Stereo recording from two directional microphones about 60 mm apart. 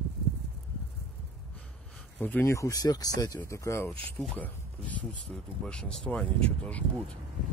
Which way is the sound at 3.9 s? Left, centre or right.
Centre.